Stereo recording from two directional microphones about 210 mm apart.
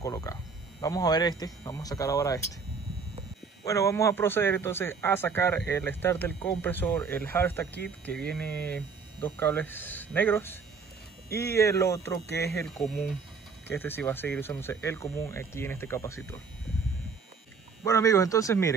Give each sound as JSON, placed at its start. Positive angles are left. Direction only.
{"t": 0.0, "sound": "a man's voice", "side_deg": 15}
{"t": 3.6, "sound": "a man's voice", "side_deg": 15}
{"t": 12.6, "sound": "a man's voice", "side_deg": 0}
{"t": 17.8, "sound": "a man's voice", "side_deg": 15}